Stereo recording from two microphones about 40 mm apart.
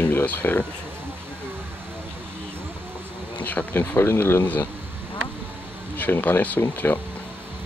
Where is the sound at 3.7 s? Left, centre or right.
Left.